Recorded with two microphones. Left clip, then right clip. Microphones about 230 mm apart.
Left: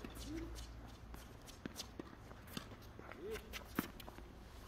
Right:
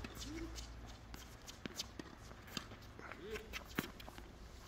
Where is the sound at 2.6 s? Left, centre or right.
Centre.